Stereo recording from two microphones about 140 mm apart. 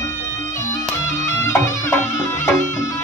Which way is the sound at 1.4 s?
20° left (ahead or behind).